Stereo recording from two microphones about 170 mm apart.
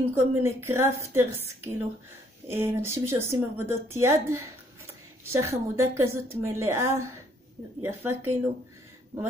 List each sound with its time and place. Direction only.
0.1 s a woman's voice: 15° right (ahead or behind)